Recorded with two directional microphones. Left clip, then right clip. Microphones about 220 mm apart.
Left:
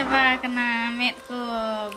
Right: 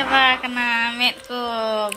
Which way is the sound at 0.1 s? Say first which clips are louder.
Right 4 dB; 25° right (ahead or behind).